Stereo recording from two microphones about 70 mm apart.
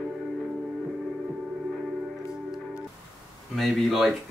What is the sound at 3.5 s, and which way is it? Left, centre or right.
Speech, centre.